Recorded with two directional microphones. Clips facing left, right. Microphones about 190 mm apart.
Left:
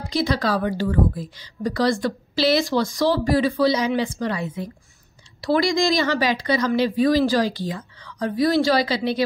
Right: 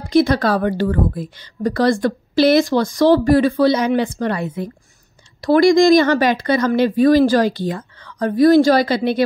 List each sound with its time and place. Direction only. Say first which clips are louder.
0.1 s a woman's voice: right 7 dB; 55° right (ahead or behind)